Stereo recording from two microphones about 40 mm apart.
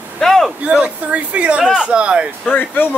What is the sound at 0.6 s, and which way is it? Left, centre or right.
Speech, right.